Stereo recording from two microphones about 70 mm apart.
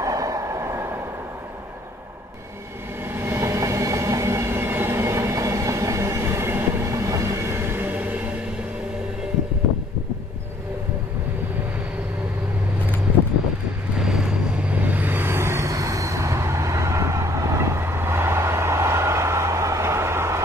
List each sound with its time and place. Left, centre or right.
0.0 s train: right
3.1 s train: right
13.9 s vehicle: centre
14.7 s a sound: right